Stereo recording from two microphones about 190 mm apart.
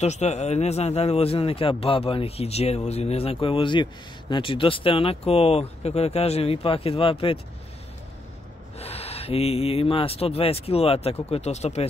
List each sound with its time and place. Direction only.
0.0 s a man's voice: 35° left (ahead or behind)
8.7 s a man's voice: 35° left (ahead or behind)